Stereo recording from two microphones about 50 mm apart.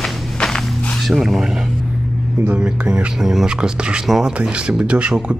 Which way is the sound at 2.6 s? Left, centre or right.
Right.